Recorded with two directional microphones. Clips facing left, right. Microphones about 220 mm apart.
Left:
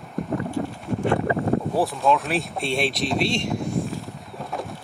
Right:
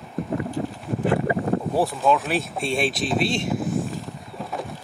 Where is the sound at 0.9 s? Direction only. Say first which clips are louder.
Left 2 dB; 15° right (ahead or behind).